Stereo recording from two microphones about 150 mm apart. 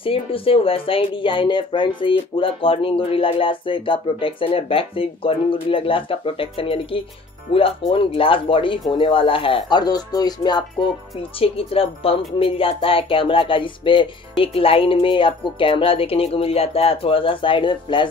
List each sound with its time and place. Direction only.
0.0 s speech: 40° left (ahead or behind)
11.3 s speech: 40° left (ahead or behind)